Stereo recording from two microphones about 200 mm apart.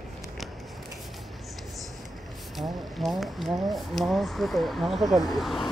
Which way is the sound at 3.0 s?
Centre (ahead or behind).